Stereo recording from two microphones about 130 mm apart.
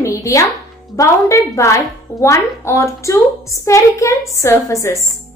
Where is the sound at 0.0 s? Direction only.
25° left (ahead or behind).